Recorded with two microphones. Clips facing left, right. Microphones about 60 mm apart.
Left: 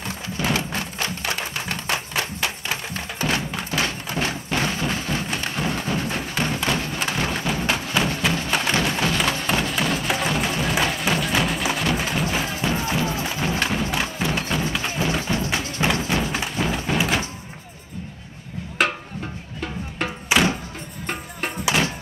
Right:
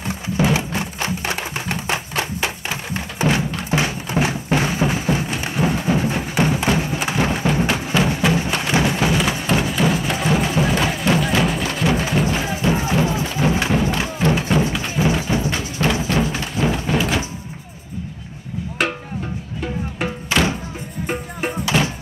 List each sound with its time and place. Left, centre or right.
0.0 s music: centre
5.4 s a sound: centre
5.9 s music: centre
12.4 s music: centre
15.8 s a sound: centre
16.3 s a sound: centre
16.7 s music: centre
20.3 s music: centre
21.7 s music: centre